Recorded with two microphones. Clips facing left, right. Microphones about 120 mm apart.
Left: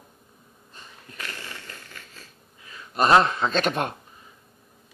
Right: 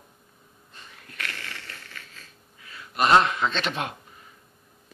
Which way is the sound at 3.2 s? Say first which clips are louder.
Left 2 dB; 35° left (ahead or behind).